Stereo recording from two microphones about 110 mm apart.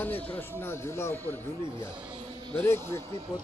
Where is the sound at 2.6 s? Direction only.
20° left (ahead or behind).